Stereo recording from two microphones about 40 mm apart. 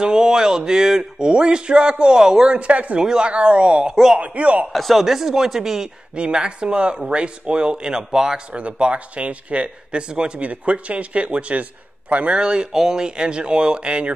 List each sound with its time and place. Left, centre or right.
0.0 s speech: centre
2.5 s speech: right
3.0 s speech: centre
3.3 s speech: right
3.9 s speech: centre
4.2 s speech: right
4.7 s speech: centre
6.1 s speech: right
8.5 s speech: right
12.4 s speech: right